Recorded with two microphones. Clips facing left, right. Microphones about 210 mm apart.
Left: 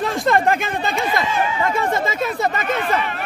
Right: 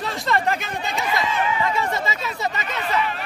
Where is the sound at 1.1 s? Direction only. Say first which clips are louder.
Left 2 dB; 50° left (ahead or behind).